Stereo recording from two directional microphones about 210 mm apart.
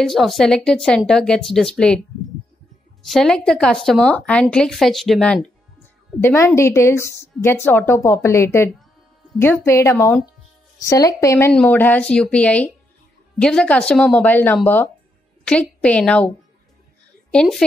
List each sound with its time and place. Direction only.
0.0 s speech: centre (ahead or behind)
3.1 s speech: centre (ahead or behind)
6.2 s a woman's voice: 15° left (ahead or behind)
17.3 s a woman's voice: 5° left (ahead or behind)